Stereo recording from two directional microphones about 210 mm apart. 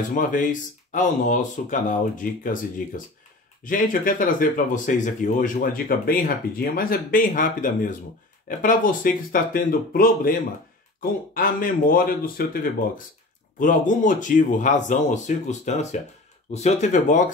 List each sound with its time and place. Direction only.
0.1 s speech: 40° left (ahead or behind)
3.6 s speech: 40° left (ahead or behind)